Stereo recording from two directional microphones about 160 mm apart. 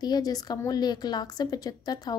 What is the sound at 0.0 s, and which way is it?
A woman's voice, 25° left (ahead or behind).